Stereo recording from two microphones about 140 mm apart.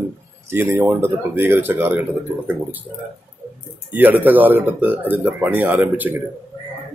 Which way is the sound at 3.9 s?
10° right (ahead or behind).